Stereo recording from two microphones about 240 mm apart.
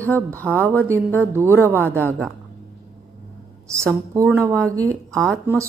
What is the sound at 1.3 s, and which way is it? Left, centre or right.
Speech, centre.